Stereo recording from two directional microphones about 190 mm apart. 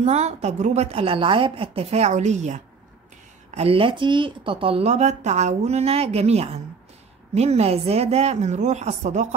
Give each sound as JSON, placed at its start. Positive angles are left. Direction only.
{"t": 0.0, "sound": "a woman's voice", "side_deg": -35}